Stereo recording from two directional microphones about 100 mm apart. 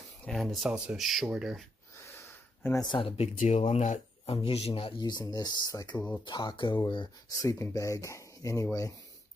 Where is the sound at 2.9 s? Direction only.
75° left (ahead or behind); by 3.8 s 90° left.